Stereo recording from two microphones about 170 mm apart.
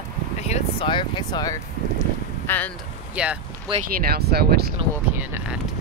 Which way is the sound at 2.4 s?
10° left (ahead or behind).